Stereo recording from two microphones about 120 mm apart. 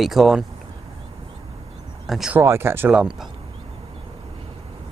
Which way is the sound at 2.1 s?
5° right (ahead or behind).